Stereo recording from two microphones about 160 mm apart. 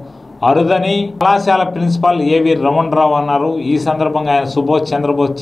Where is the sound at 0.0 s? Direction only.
Centre (ahead or behind).